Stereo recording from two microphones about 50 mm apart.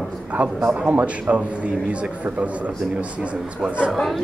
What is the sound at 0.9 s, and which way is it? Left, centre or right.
Speech, right.